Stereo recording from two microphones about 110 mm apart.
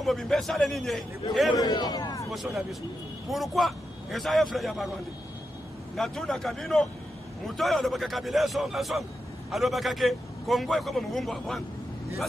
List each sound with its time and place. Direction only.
0.0 s a man's voice: centre (ahead or behind)
1.6 s a man's voice: 40° left (ahead or behind)
2.3 s a man's voice: centre (ahead or behind)
5.9 s a man's voice: 5° left (ahead or behind)